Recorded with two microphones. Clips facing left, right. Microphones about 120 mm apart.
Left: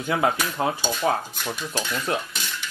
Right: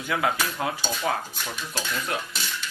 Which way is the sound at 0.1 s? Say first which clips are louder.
Left 3 dB; 30° left (ahead or behind).